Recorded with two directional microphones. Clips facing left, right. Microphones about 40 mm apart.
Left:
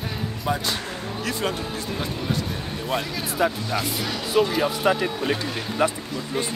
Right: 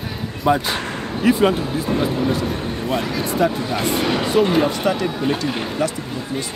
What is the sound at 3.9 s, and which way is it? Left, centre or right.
Speech, right.